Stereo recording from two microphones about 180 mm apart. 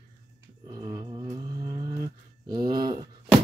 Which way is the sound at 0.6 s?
25° right (ahead or behind).